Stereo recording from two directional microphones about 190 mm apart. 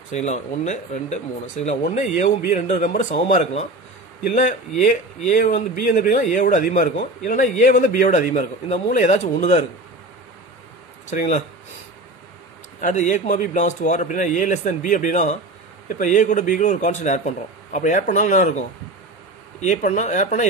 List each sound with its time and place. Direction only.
0.1 s a man's voice: 35° left (ahead or behind)
11.1 s a man's voice: 40° left (ahead or behind)
12.8 s a man's voice: 40° left (ahead or behind)